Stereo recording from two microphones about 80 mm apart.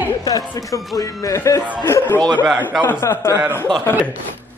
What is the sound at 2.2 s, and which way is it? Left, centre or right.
Speech, right.